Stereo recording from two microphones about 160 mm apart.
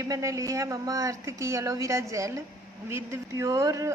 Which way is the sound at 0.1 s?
20° right (ahead or behind).